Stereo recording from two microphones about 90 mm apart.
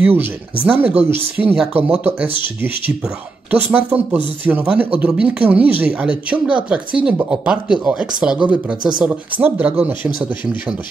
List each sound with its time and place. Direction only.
0.0 s speech: 20° right (ahead or behind)
3.5 s speech: 15° right (ahead or behind)